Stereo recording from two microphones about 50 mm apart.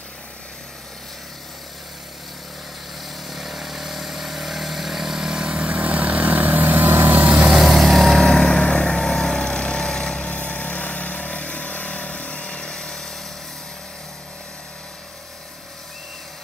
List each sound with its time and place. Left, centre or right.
3.3 s vehicle: centre; by 7.4 s right
7.4 s vehicle: centre